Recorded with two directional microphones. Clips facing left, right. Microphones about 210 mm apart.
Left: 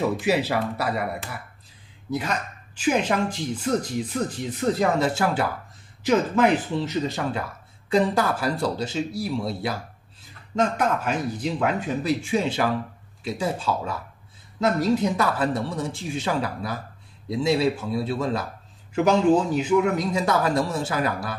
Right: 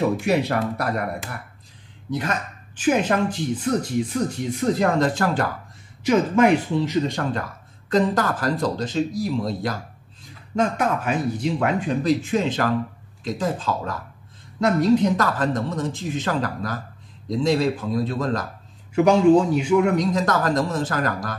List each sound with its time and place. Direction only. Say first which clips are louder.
0.2 s speech: right 2 dB; 5° left (ahead or behind)
10.6 s speech: right 1 dB; 5° right (ahead or behind)
19.7 s speech: right 2 dB; 5° left (ahead or behind)